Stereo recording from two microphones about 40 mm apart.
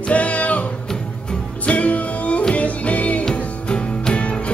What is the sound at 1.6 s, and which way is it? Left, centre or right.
Music, left.